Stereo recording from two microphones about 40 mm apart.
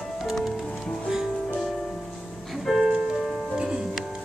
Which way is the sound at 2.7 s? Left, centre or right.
Centre.